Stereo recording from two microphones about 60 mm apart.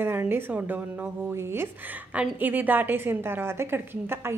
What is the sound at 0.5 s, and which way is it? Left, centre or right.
Speech, centre.